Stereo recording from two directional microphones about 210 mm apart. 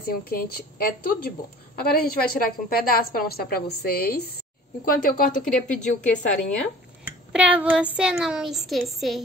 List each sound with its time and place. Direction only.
0.0 s a woman's voice: 45° left (ahead or behind)
5.4 s a child's voice: 5° left (ahead or behind)
7.1 s a child's voice: 5° right (ahead or behind)